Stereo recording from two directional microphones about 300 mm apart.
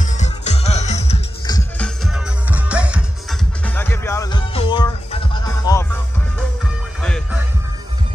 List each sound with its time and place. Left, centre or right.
0.0 s music: left
1.8 s music: centre
7.0 s music: centre